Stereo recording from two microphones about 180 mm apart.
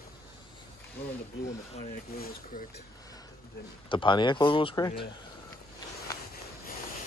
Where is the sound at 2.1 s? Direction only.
55° left (ahead or behind).